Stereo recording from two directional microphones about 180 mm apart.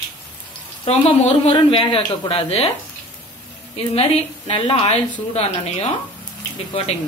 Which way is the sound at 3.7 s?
35° left (ahead or behind).